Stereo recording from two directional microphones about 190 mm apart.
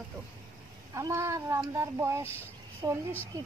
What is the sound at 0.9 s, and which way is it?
A woman's voice, 15° right (ahead or behind).